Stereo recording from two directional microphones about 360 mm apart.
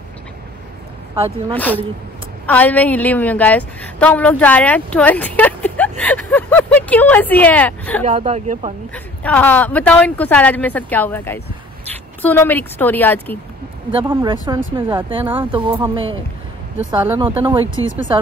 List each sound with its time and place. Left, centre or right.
1.5 s a woman's voice: centre
8.0 s speech: centre
8.9 s a woman's voice: centre
14.0 s speech: centre